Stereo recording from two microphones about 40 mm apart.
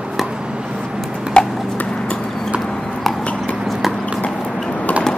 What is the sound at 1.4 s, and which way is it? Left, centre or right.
Clip-clop, left.